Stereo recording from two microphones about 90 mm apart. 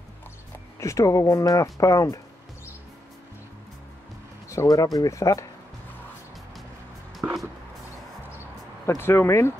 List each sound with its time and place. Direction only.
0.7 s speech: 35° left (ahead or behind)
4.5 s speech: 40° left (ahead or behind)
8.8 s speech: 30° left (ahead or behind)